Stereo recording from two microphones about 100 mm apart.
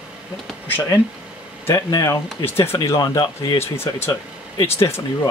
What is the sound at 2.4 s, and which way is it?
Speech, 25° left (ahead or behind).